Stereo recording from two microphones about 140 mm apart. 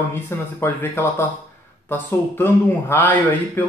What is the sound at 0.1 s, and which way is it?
Speech, 15° left (ahead or behind).